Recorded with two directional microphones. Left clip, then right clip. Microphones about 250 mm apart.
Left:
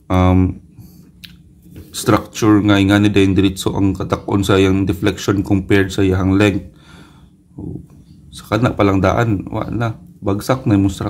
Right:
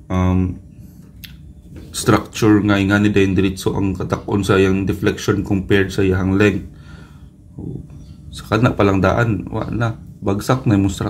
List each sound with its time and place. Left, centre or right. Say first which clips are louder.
0.1 s speech: left 6 dB; left
1.9 s speech: left 1 dB; centre
8.3 s speech: even; centre